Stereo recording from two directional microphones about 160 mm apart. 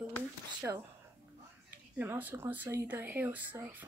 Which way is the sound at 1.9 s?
10° right (ahead or behind).